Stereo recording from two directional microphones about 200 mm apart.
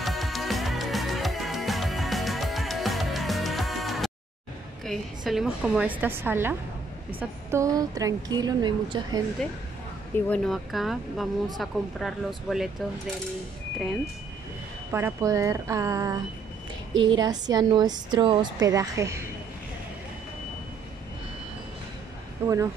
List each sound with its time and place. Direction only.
0.0 s music: centre (ahead or behind)
4.8 s a woman's voice: centre (ahead or behind); by 9.2 s 20° right (ahead or behind)
10.1 s speech: 5° left (ahead or behind)
14.9 s a woman's voice: 10° right (ahead or behind)
22.4 s a woman's voice: 10° right (ahead or behind)